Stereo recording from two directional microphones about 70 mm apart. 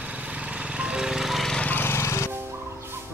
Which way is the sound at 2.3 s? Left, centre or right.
Right.